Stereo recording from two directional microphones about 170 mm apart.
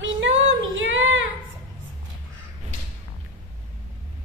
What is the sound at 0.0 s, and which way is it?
Female singing, 90° right.